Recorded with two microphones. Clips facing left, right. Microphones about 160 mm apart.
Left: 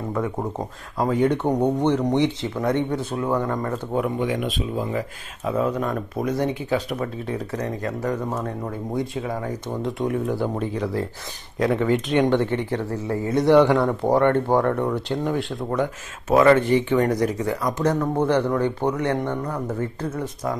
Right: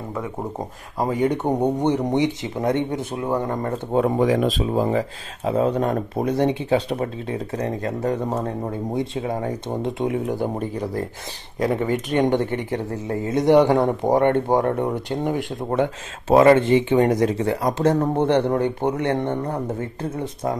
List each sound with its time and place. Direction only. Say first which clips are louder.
1.0 s speech: left 1 dB; 15° right (ahead or behind)
3.4 s speech: right 1 dB; 30° right (ahead or behind)
11.6 s speech: left 1 dB; 15° right (ahead or behind)
15.7 s speech: right 3 dB; 25° right (ahead or behind)